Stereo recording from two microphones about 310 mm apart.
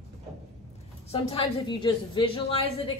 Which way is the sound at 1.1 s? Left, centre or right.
Centre.